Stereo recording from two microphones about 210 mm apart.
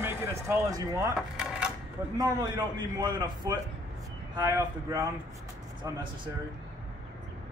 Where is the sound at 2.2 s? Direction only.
20° right (ahead or behind).